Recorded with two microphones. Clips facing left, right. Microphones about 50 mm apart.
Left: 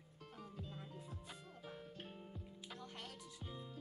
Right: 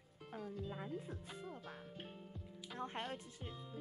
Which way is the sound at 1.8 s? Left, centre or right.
Centre.